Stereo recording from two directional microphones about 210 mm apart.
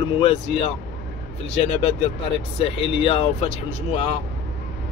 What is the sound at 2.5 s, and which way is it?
Speech, 25° left (ahead or behind).